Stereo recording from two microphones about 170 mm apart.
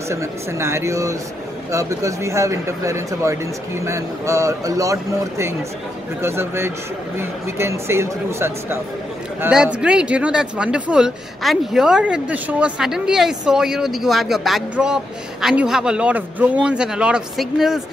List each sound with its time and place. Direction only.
0.1 s speech: 15° right (ahead or behind)
6.2 s speech: 15° right (ahead or behind)